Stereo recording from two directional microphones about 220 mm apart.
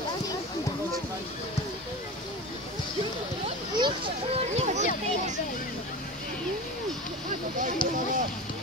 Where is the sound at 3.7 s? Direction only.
20° right (ahead or behind).